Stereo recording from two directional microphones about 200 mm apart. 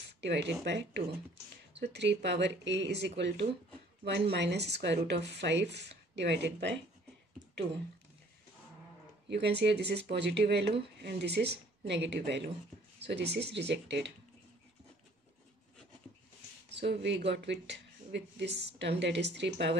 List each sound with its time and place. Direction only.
0.2 s speech: 60° right (ahead or behind)
9.3 s speech: 55° right (ahead or behind)
16.7 s speech: 60° right (ahead or behind)